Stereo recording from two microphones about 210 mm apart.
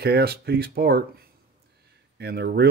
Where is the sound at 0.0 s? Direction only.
50° right (ahead or behind).